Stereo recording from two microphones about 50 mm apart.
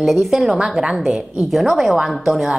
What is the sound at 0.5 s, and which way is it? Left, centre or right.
Speech, centre.